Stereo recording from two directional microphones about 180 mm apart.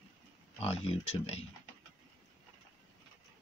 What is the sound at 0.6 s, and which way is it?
Speech, 35° left (ahead or behind).